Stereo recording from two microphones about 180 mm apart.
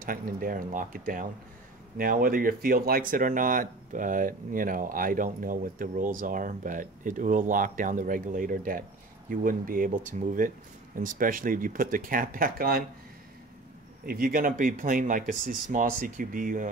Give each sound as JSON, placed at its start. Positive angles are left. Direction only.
{"t": 0.0, "sound": "speech", "side_deg": -50}
{"t": 14.0, "sound": "speech", "side_deg": -55}